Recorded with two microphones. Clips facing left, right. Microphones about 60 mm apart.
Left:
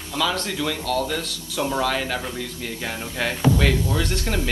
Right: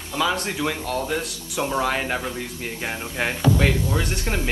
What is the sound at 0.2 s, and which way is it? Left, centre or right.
Speech, right.